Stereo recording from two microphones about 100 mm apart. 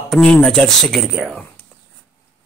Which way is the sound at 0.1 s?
5° left (ahead or behind).